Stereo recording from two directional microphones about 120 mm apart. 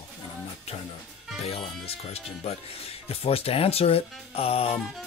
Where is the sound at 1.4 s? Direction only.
55° left (ahead or behind).